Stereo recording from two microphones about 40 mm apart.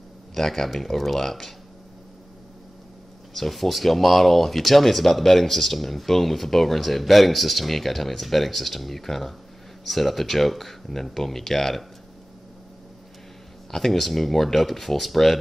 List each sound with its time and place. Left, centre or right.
0.3 s speech: centre
3.3 s speech: centre
13.7 s speech: centre